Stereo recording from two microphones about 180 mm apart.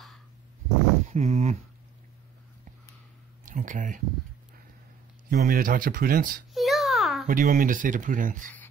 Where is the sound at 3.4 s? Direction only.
45° right (ahead or behind).